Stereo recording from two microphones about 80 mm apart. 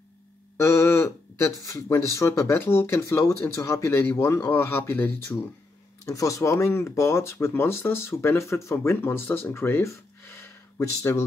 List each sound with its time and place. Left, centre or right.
0.6 s a sound: left
1.8 s speech: left
6.0 s speech: left